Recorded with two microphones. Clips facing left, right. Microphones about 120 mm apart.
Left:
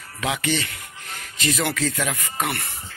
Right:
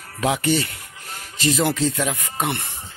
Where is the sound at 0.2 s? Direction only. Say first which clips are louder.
Right 4 dB; 35° right (ahead or behind).